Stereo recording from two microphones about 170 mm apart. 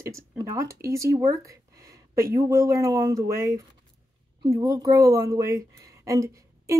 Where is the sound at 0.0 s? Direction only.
20° right (ahead or behind).